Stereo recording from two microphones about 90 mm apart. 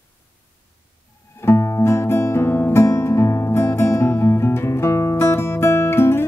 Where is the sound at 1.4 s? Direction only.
30° left (ahead or behind).